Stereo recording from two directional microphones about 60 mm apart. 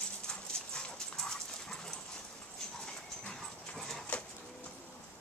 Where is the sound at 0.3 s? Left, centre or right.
Centre.